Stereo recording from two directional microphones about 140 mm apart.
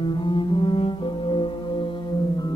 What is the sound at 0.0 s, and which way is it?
Music, 35° left (ahead or behind).